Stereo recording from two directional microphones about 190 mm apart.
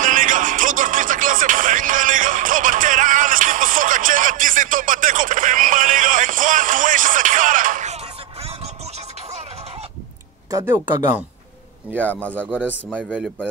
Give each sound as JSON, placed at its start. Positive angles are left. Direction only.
{"t": 0.0, "sound": "music", "side_deg": -45}
{"t": 10.5, "sound": "speech", "side_deg": -10}
{"t": 12.0, "sound": "speech", "side_deg": 10}
{"t": 12.6, "sound": "speech", "side_deg": -5}